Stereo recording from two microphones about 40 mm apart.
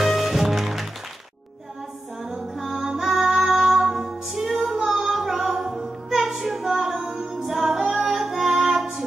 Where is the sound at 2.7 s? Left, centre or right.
Centre.